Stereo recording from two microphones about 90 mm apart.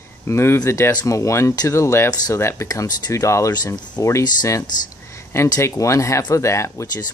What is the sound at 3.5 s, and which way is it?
Speech, 50° left (ahead or behind).